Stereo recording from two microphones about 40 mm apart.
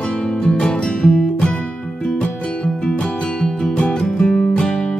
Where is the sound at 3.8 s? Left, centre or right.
Left.